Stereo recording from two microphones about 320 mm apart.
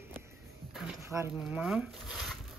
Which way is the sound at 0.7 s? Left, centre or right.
Centre.